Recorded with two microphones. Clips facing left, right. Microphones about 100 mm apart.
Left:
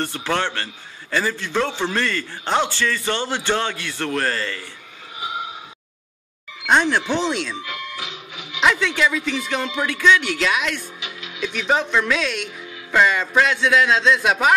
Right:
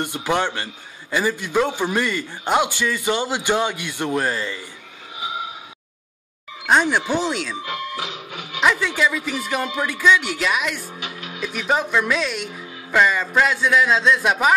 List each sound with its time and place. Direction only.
0.0 s a man's voice: 15° right (ahead or behind)
6.6 s a man's voice: 10° right (ahead or behind)
7.6 s music: 30° right (ahead or behind)
8.3 s music: 45° right (ahead or behind)
8.5 s a man's voice: 5° right (ahead or behind)
11.0 s music: 45° right (ahead or behind)
11.4 s a man's voice: 5° right (ahead or behind)